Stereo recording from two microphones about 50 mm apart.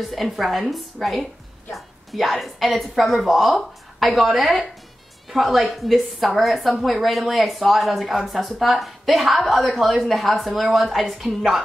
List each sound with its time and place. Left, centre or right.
0.1 s a woman's voice: centre